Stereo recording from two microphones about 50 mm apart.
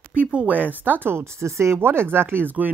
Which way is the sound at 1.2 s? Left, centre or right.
Right.